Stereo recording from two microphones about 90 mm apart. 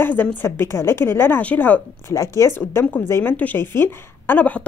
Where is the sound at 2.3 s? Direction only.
30° left (ahead or behind).